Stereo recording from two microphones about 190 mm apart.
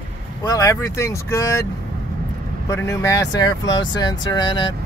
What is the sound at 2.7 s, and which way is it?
Speech, 15° left (ahead or behind).